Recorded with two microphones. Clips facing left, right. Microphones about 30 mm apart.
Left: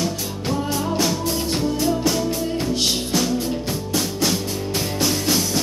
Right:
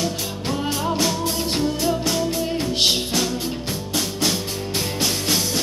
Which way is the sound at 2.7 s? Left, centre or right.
Right.